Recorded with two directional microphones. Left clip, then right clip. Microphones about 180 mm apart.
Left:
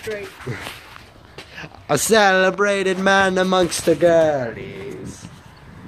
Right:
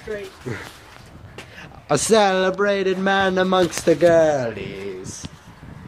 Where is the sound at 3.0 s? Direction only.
60° left (ahead or behind).